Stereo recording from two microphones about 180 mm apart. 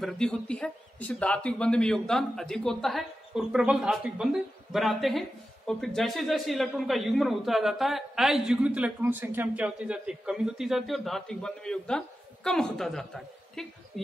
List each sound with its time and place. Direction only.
0.0 s speech: 5° left (ahead or behind)